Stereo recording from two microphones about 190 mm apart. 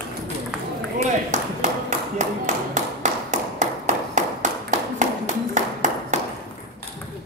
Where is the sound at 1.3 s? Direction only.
40° right (ahead or behind).